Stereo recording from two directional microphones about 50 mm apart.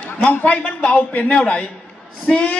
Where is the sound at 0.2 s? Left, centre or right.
Left.